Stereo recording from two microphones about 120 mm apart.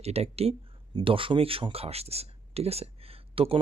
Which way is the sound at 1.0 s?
45° right (ahead or behind).